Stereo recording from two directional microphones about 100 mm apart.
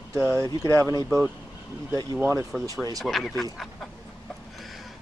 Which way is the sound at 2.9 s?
Centre (ahead or behind).